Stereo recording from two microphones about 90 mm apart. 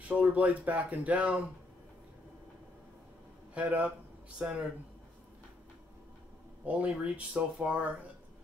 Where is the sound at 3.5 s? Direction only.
15° right (ahead or behind).